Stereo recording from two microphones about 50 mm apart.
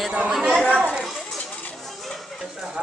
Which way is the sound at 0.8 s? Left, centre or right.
Centre.